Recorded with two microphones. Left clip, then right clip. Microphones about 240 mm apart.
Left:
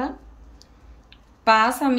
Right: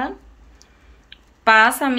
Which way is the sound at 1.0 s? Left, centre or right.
Centre.